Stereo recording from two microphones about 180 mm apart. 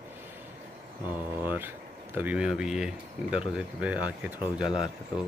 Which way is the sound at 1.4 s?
10° right (ahead or behind).